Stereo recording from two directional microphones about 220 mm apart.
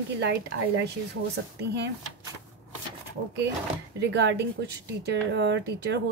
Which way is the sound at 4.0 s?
50° right (ahead or behind).